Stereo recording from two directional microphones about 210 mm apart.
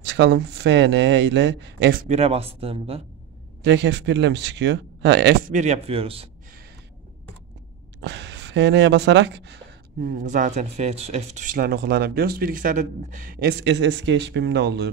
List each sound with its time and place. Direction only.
0.0 s speech: 55° right (ahead or behind)
2.0 s speech: 30° right (ahead or behind)
3.6 s speech: 55° right (ahead or behind)
5.5 s speech: 35° right (ahead or behind)
8.0 s speech: 55° right (ahead or behind)
10.0 s speech: 40° right (ahead or behind); by 14.9 s 55° right (ahead or behind)